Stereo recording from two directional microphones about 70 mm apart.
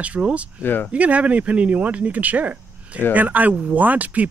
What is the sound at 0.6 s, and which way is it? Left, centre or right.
Speech, left.